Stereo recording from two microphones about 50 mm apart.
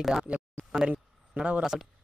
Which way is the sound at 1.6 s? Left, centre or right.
Centre.